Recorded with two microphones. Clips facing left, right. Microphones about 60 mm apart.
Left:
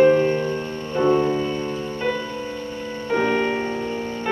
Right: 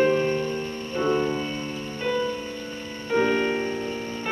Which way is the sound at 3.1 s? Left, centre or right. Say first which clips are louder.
Left 1 dB; centre.